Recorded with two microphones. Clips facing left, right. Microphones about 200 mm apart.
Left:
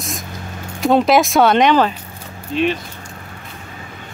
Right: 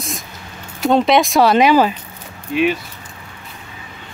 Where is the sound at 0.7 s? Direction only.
Centre (ahead or behind).